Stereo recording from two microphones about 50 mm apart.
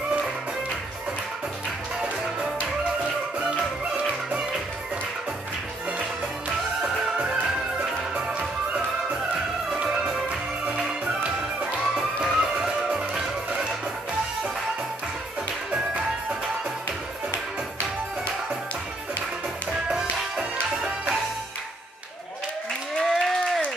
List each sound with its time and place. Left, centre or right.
3.3 s music: right
7.2 s music: centre
12.2 s music: centre
15.7 s music: right
19.9 s music: centre
22.9 s applause: centre